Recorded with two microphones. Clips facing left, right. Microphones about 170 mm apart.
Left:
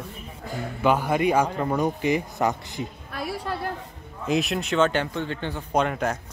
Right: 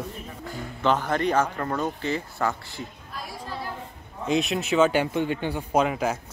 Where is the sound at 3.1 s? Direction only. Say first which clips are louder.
Left 9 dB; 65° left (ahead or behind).